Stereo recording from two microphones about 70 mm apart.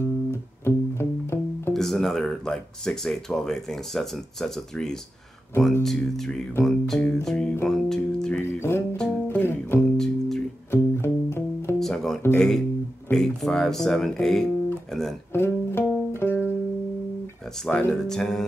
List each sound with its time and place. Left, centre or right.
0.7 s music: left
1.7 s speech: centre
6.6 s music: centre
8.4 s speech: left
8.9 s music: centre
9.4 s speech: left
9.9 s music: centre
10.7 s music: left
11.8 s speech: centre
12.4 s music: centre
13.1 s speech: centre
15.3 s music: left
17.7 s music: centre